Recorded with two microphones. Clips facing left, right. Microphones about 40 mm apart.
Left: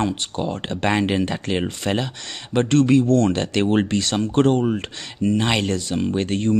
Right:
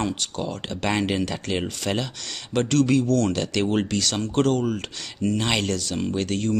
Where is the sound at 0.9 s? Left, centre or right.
Centre.